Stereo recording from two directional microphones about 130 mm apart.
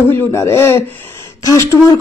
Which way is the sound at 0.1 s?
20° left (ahead or behind).